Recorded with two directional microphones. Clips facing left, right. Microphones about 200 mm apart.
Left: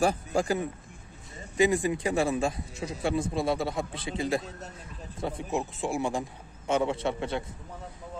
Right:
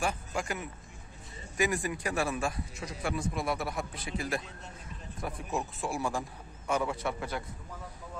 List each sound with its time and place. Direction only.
0.0 s a man's voice: 35° left (ahead or behind)